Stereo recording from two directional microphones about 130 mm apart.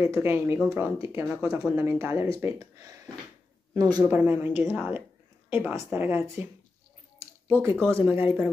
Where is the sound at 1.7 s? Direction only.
20° right (ahead or behind).